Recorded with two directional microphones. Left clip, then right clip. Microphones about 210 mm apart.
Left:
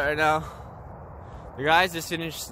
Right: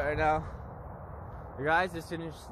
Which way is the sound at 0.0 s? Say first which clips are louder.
Left 6 dB; 30° left (ahead or behind).